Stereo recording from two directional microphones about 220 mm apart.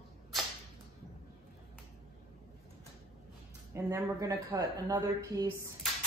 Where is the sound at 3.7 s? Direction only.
15° right (ahead or behind).